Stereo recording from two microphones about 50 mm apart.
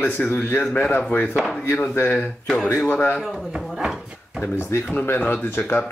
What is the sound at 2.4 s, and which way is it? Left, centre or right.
Speech, centre.